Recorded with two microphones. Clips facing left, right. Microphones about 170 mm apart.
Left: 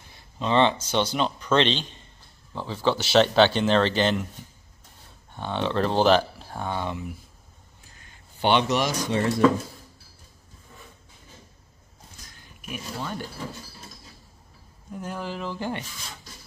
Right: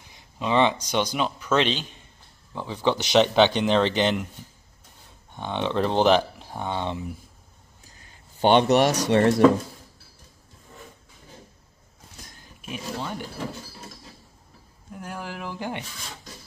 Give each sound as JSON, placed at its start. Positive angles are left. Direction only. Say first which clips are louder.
{"t": 0.1, "sound": "speech", "louder": "even", "side_deg": -10}
{"t": 5.3, "sound": "speech", "louder": "even", "side_deg": -15}
{"t": 8.0, "sound": "speech", "louder": "right 4 dB", "side_deg": -45}
{"t": 12.7, "sound": "speech", "louder": "right 1 dB", "side_deg": -15}
{"t": 15.0, "sound": "speech", "louder": "left 3 dB", "side_deg": -10}